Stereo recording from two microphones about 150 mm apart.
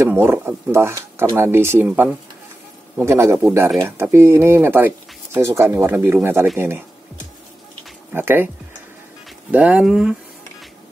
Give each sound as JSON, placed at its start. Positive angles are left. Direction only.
{"t": 0.0, "sound": "speech", "side_deg": -15}
{"t": 8.1, "sound": "speech", "side_deg": -15}
{"t": 9.5, "sound": "speech", "side_deg": -10}